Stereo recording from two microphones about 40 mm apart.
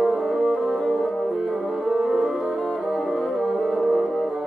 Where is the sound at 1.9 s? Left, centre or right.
Centre.